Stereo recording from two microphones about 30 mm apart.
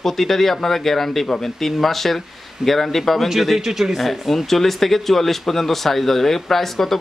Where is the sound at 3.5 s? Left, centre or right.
Centre.